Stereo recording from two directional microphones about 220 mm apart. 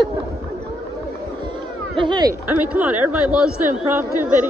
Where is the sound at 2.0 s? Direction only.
20° right (ahead or behind).